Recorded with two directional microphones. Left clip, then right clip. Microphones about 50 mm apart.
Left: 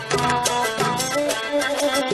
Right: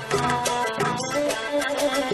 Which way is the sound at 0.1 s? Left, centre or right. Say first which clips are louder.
Left 3 dB; right.